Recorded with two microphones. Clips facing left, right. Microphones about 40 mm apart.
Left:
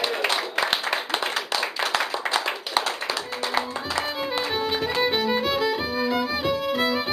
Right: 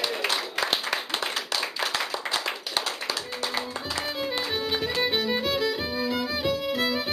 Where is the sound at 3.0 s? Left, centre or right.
Left.